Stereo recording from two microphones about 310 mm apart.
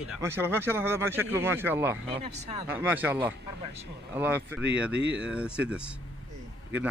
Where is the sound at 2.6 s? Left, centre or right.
Centre.